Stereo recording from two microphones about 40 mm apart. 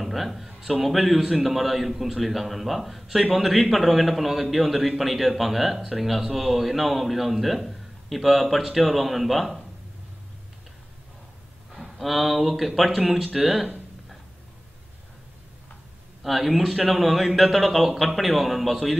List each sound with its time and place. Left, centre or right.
0.0 s a man's voice: centre
11.7 s a man's voice: centre
16.2 s a man's voice: centre